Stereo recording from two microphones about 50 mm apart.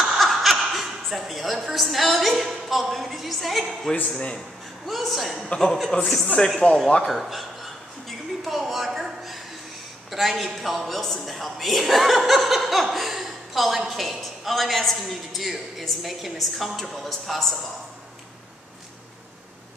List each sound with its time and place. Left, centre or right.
0.0 s chuckle: centre
4.8 s speech: centre
5.9 s a man's voice: centre
7.1 s speech: centre
8.5 s a woman's voice: centre